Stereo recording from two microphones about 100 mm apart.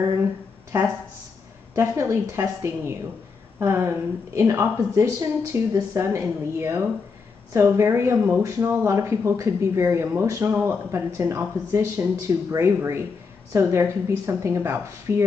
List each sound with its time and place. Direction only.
1.8 s speech: 25° right (ahead or behind)